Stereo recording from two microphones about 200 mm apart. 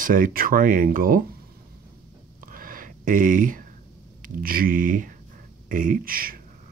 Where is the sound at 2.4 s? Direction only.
45° right (ahead or behind).